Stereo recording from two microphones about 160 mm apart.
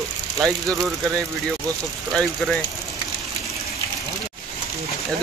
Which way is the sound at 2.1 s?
Centre (ahead or behind).